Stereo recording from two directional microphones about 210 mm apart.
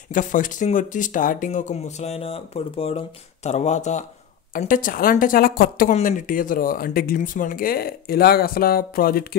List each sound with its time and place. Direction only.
0.1 s a woman's voice: 40° left (ahead or behind)